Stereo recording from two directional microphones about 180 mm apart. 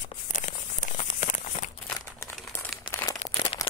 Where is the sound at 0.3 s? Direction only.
45° left (ahead or behind).